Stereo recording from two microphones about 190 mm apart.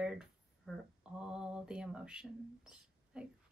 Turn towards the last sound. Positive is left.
turn(degrees=-5)  # may be behind; listen again after turning